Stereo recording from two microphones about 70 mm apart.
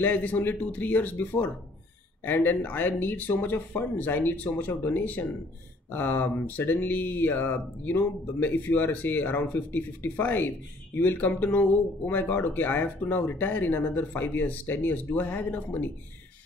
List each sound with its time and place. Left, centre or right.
0.0 s speech: left